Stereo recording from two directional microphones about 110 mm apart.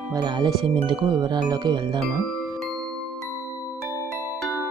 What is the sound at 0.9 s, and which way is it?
Speech, 50° right (ahead or behind).